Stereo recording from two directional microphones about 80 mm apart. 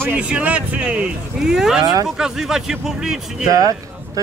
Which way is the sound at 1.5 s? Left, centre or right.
Centre.